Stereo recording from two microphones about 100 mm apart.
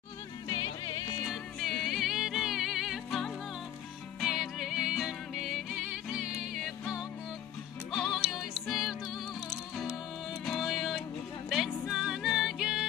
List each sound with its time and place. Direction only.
0.5 s music: 50° left (ahead or behind)
1.3 s music: centre (ahead or behind)
10.4 s music: centre (ahead or behind)